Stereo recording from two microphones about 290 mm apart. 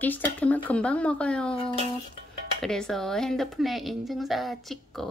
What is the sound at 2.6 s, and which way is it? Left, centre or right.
Speech, centre.